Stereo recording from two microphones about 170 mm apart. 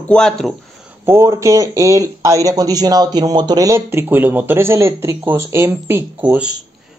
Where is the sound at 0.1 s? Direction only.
5° left (ahead or behind).